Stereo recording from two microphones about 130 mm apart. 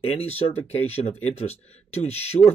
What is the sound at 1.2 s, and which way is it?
Speech, 50° left (ahead or behind).